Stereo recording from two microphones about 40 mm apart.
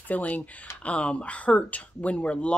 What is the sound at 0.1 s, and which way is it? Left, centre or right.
Speech, left.